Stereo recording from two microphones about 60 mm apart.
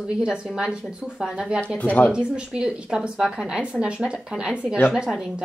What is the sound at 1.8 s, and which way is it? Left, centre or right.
Speech, left.